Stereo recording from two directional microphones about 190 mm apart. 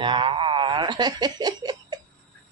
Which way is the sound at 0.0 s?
25° right (ahead or behind).